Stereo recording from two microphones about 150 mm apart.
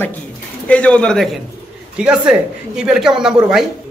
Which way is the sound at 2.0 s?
5° right (ahead or behind).